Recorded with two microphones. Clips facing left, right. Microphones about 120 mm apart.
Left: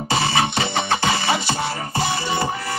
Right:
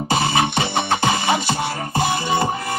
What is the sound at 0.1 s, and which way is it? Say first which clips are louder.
Music: right 1 dB; 50° right (ahead or behind).